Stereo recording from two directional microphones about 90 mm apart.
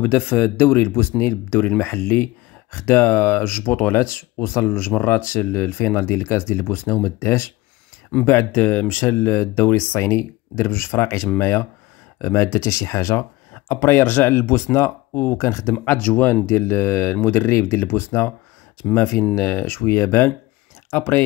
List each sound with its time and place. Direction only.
0.0 s speech: 20° left (ahead or behind)